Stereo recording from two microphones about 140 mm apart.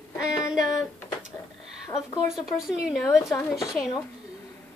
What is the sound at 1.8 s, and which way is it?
Speech, 25° left (ahead or behind).